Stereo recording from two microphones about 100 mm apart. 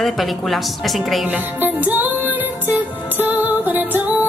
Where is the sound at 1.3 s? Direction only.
20° right (ahead or behind).